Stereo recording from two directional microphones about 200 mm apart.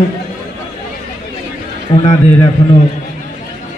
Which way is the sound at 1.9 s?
25° left (ahead or behind).